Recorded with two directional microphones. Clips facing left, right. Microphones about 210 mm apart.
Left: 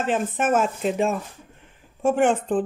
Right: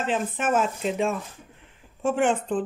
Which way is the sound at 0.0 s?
50° left (ahead or behind).